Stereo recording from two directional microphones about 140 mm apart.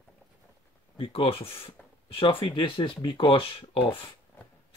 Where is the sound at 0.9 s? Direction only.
40° left (ahead or behind).